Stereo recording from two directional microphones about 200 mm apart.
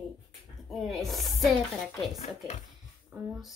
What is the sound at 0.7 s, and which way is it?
Speech, centre (ahead or behind).